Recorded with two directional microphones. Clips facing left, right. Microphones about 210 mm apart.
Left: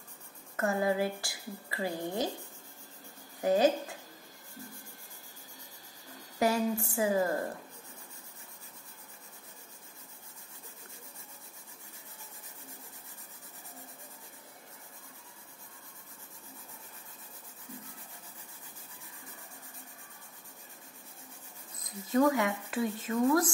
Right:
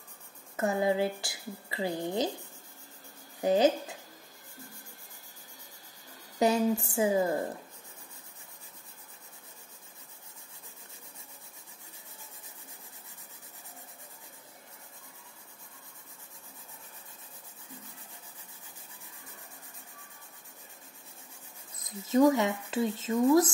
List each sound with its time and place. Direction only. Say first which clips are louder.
0.6 s a woman's voice: right 2 dB; 20° right (ahead or behind)
3.3 s speech: right 1 dB; 20° right (ahead or behind)
6.4 s a woman's voice: right 3 dB; 20° right (ahead or behind)
22.1 s a woman's voice: right 3 dB; 25° right (ahead or behind)